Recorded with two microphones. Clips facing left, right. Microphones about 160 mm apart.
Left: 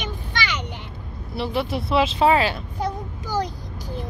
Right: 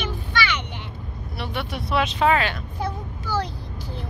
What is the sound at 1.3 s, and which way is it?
Speech, 30° left (ahead or behind).